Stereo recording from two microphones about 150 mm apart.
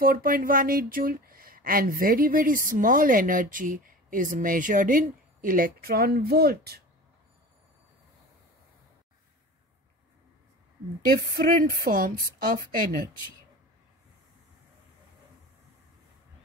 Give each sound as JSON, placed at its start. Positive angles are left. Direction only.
{"t": 0.0, "sound": "speech", "side_deg": -75}
{"t": 11.1, "sound": "speech", "side_deg": -75}